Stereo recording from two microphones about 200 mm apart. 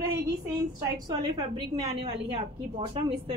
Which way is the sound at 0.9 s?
20° right (ahead or behind).